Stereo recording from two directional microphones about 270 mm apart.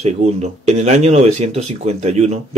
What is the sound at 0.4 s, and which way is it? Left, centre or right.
Speech, right.